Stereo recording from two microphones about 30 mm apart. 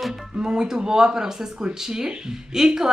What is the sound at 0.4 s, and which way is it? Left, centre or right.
A woman's voice, right.